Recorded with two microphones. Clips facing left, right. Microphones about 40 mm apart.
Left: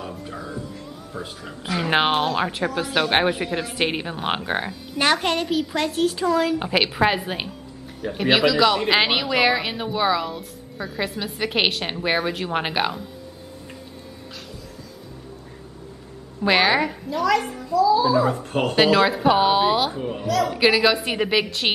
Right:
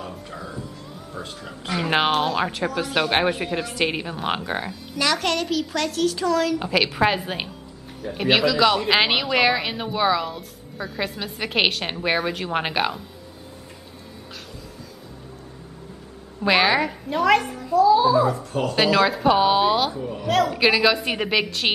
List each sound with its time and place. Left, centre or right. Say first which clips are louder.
1.1 s speech: left 1 dB; centre
4.9 s a child's voice: left 3 dB; left
5.2 s speech: left 1 dB; left
6.9 s speech: even; centre
16.4 s speech: even; centre
17.1 s a child's voice: right 3 dB; right
18.2 s speech: left 1 dB; left
18.8 s speech: left 2 dB; left
19.0 s speech: even; centre
20.0 s speech: left 2 dB; left
20.5 s speech: left 1 dB; centre